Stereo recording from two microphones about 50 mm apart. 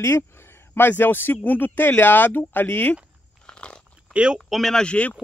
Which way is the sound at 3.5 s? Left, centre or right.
Left.